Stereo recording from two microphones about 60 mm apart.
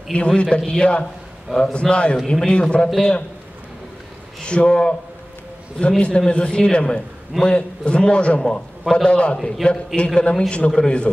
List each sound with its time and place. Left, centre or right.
0.1 s a man's voice: centre
2.1 s a man's voice: centre
2.4 s a man's voice: centre
4.5 s a man's voice: centre